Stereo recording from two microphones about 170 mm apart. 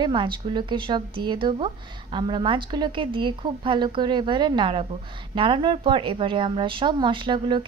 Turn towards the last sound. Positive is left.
turn(degrees=-30)  # may be behind; listen again after turning